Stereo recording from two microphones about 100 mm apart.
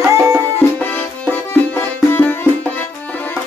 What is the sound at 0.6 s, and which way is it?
Music, 15° left (ahead or behind).